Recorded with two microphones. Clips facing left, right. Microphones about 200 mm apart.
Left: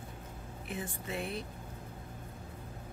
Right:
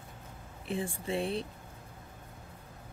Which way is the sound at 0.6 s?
30° right (ahead or behind).